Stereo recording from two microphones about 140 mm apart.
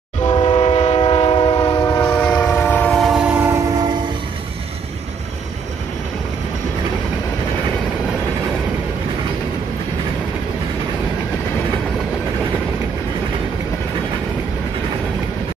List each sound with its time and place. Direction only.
0.4 s train: 50° left (ahead or behind)
1.8 s train: 20° left (ahead or behind)
2.0 s train: 10° left (ahead or behind)
3.0 s train: 5° right (ahead or behind); by 3.9 s 25° right (ahead or behind)